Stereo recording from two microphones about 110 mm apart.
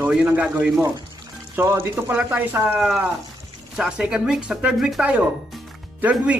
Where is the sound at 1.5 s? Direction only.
25° right (ahead or behind).